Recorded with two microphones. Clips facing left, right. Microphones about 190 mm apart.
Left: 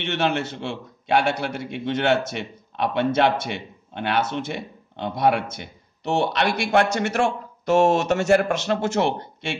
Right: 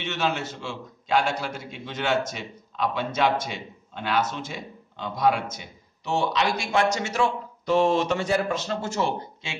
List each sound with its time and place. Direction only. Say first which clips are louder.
0.0 s a man's voice: left 4 dB; 60° left (ahead or behind)
7.7 s speech: left 3 dB; 45° left (ahead or behind)
8.1 s speech: left 6 dB; 70° left (ahead or behind)